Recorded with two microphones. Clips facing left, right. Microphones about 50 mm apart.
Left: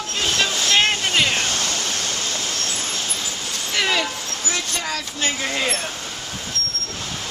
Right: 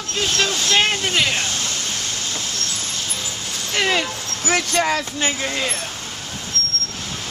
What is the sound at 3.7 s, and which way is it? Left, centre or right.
Speech, centre.